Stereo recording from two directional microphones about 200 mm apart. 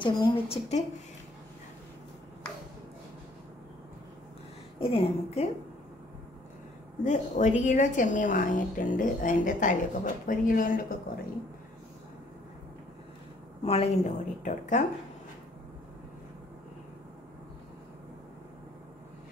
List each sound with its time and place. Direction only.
0.0 s a woman's voice: 25° left (ahead or behind)
4.7 s a woman's voice: 25° left (ahead or behind)
7.1 s a woman's voice: 35° left (ahead or behind)
13.7 s a woman's voice: 30° left (ahead or behind)